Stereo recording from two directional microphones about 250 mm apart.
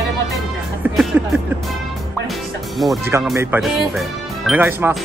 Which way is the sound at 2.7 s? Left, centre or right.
Centre.